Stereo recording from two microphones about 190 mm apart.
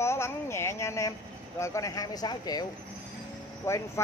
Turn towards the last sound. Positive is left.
turn(degrees=15)  # may be behind; listen again after turning